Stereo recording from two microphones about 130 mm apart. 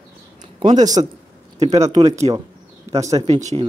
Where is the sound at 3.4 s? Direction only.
65° right (ahead or behind).